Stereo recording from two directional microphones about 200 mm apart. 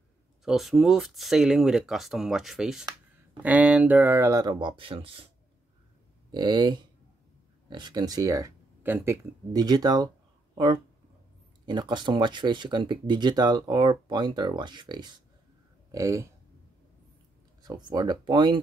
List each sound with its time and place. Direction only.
0.5 s speech: centre (ahead or behind); by 5.3 s 25° right (ahead or behind)
6.3 s speech: 20° right (ahead or behind)
11.6 s speech: 20° right (ahead or behind)
17.6 s speech: 20° right (ahead or behind)